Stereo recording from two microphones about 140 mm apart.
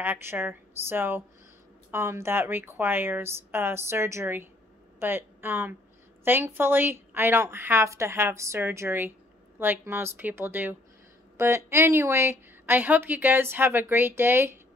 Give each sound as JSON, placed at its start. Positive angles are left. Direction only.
{"t": 0.0, "sound": "a woman's voice", "side_deg": -15}